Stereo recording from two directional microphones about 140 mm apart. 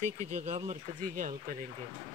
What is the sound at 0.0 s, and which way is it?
Speech, 55° right (ahead or behind).